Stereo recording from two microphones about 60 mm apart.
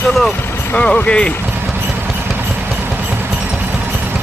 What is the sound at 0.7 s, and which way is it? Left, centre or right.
Speech, centre.